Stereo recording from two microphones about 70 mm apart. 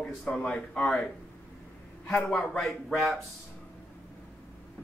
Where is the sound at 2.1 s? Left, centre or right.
Centre.